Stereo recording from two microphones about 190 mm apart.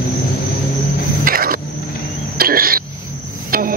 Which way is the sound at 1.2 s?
50° right (ahead or behind).